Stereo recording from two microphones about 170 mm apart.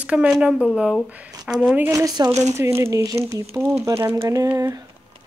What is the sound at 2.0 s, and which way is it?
Speech, 20° right (ahead or behind).